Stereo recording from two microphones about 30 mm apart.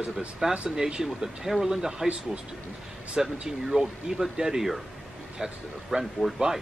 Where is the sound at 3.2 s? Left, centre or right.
Centre.